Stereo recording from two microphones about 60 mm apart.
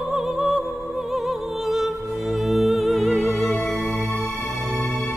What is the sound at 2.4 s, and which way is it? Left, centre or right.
Music, centre.